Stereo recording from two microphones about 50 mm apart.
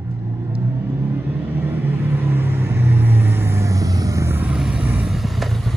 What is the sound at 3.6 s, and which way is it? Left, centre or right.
Vehicle, right.